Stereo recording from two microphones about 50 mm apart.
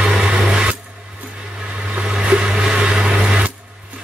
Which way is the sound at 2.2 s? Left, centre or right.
Right.